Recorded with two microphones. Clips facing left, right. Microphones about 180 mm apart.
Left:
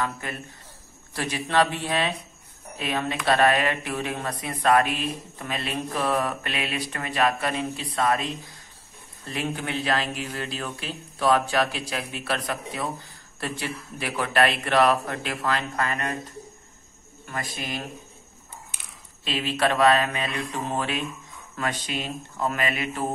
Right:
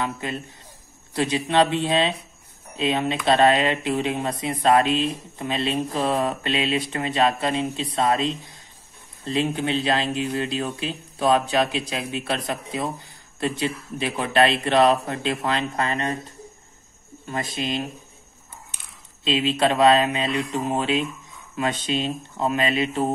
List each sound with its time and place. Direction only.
0.0 s speech: 20° right (ahead or behind)
17.3 s speech: 20° right (ahead or behind)
19.2 s speech: 20° right (ahead or behind)